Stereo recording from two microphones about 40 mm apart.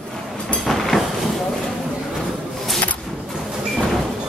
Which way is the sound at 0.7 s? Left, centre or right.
Centre.